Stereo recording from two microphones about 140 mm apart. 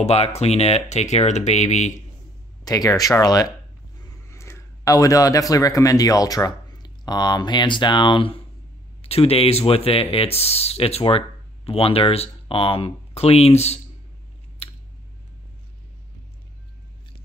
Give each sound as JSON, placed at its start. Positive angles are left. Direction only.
{"t": 0.0, "sound": "speech", "side_deg": 50}
{"t": 2.6, "sound": "speech", "side_deg": 25}